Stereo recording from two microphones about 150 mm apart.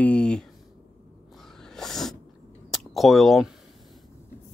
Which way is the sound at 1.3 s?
5° left (ahead or behind).